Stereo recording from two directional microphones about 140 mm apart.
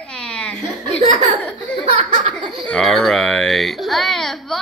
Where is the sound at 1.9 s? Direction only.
60° right (ahead or behind).